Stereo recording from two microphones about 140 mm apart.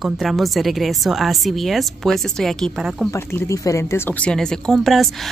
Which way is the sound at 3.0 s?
20° left (ahead or behind).